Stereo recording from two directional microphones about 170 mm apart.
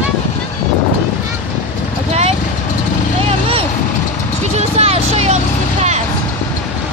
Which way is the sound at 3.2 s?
35° right (ahead or behind).